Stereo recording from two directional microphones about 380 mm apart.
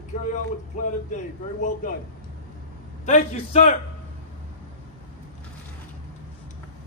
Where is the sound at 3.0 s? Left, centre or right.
Centre.